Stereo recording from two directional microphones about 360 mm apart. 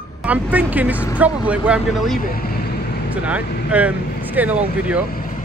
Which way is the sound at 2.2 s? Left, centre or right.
Left.